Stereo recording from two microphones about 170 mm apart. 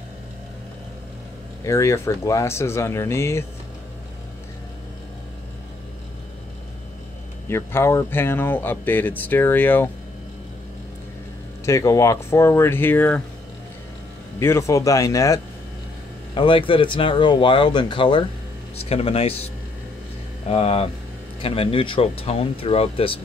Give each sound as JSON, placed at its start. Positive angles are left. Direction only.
{"t": 1.6, "sound": "speech", "side_deg": 15}
{"t": 7.4, "sound": "speech", "side_deg": 15}
{"t": 11.6, "sound": "speech", "side_deg": 20}
{"t": 14.4, "sound": "speech", "side_deg": 15}
{"t": 16.3, "sound": "speech", "side_deg": 30}